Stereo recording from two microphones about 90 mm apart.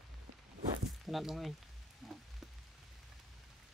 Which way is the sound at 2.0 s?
Centre (ahead or behind).